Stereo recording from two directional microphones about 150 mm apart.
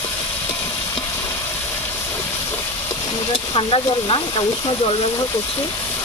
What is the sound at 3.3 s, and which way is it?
Speech, 35° left (ahead or behind).